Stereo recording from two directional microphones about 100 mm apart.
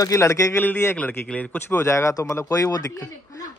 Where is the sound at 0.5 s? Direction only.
20° left (ahead or behind).